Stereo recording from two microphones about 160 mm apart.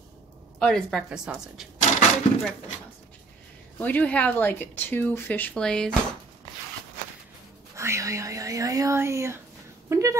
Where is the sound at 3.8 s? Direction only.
10° left (ahead or behind).